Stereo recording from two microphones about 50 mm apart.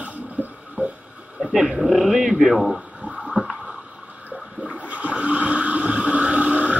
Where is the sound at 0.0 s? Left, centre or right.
Right.